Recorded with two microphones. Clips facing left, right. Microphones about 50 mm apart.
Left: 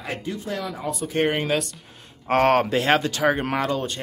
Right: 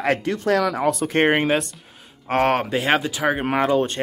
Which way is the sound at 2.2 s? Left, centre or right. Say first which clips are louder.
Left 1 dB; centre.